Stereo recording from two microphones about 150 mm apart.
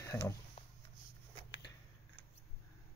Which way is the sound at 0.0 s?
20° left (ahead or behind).